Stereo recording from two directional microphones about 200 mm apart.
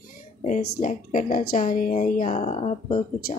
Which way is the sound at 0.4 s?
40° left (ahead or behind).